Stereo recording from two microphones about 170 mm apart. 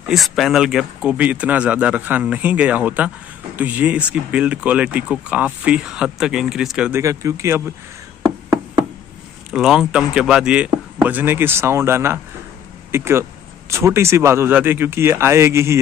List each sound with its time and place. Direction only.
0.1 s speech: centre (ahead or behind)
6.9 s speech: 20° right (ahead or behind)
9.5 s speech: 5° right (ahead or behind)